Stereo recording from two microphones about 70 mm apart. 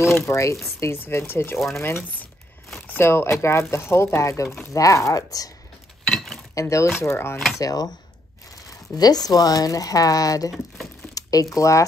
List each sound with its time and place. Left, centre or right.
0.0 s speech: left
0.9 s speech: left
6.0 s cutlery: centre
6.5 s speech: left
7.0 s speech: left
7.5 s speech: left
8.9 s speech: left
11.1 s a sound: left
11.5 s speech: left